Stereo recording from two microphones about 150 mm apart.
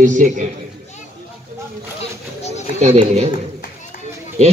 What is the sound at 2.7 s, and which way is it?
Speech, 45° right (ahead or behind).